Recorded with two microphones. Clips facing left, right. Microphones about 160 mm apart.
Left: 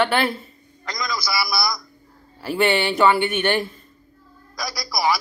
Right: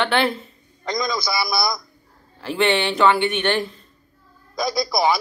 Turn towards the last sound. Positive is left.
turn(degrees=-25)  # may be behind; listen again after turning